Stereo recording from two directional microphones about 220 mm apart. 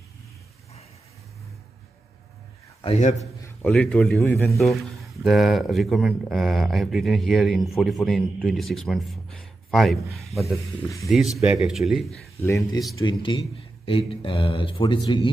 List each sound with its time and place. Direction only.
2.8 s a man's voice: 30° left (ahead or behind)
3.4 s a man's voice: 5° left (ahead or behind)
12.4 s speech: 10° left (ahead or behind)